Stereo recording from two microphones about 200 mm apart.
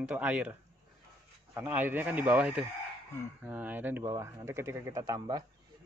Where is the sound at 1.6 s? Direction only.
10° right (ahead or behind).